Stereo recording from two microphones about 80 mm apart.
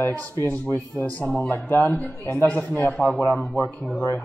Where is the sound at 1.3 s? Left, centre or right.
Centre.